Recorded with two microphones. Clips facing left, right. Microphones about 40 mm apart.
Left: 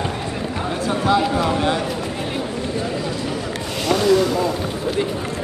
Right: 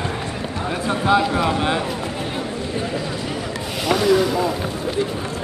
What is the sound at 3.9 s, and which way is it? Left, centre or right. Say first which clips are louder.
Speech: left 1 dB; centre.